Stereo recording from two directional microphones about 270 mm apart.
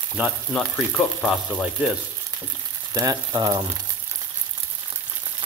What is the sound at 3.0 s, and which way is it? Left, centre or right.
Speech, centre.